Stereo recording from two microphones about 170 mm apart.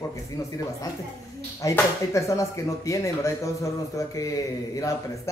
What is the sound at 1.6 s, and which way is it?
Speech, 20° left (ahead or behind).